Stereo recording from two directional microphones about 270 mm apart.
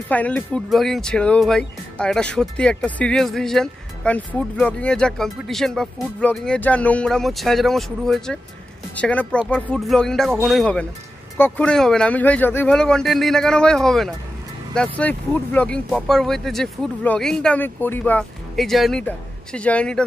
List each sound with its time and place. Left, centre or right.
0.1 s speech: centre